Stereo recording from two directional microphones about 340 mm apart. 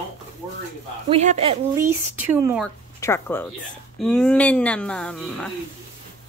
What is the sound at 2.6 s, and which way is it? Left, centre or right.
Speech, centre.